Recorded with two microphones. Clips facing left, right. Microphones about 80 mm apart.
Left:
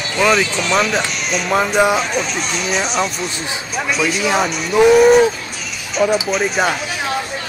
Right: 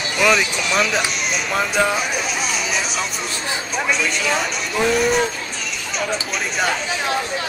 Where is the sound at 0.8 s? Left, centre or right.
Centre.